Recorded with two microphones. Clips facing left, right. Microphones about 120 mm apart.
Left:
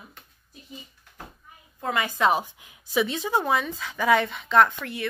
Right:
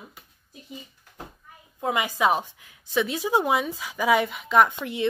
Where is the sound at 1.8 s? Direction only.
15° right (ahead or behind).